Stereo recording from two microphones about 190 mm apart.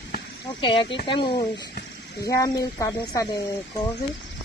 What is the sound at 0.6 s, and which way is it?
Speech, 25° left (ahead or behind).